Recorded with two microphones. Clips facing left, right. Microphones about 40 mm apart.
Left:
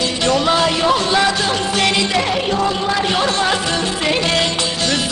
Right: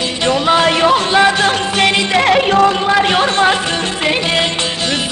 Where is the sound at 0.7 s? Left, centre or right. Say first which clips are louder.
Right 4 dB; right.